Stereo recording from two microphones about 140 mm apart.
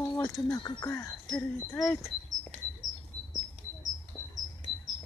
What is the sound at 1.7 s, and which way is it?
Speech, centre (ahead or behind).